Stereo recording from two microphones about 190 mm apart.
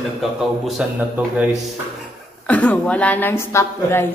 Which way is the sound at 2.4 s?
10° left (ahead or behind).